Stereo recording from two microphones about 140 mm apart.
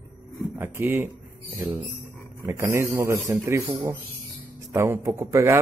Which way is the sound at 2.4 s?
20° right (ahead or behind).